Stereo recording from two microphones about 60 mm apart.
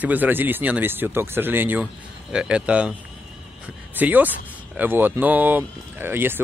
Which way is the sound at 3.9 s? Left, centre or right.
Right.